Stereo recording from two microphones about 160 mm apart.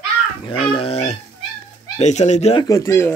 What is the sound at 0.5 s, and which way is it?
Speech, 35° left (ahead or behind).